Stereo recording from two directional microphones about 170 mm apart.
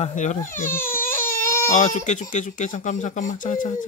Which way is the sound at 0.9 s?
15° left (ahead or behind).